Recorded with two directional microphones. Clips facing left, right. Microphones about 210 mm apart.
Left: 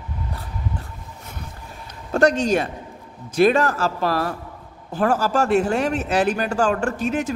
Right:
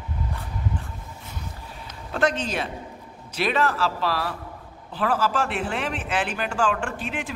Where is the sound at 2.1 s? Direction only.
45° left (ahead or behind).